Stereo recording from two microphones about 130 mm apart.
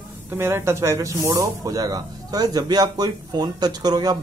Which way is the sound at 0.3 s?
20° right (ahead or behind).